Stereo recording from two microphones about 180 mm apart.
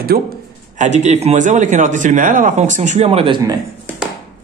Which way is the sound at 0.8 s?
40° right (ahead or behind).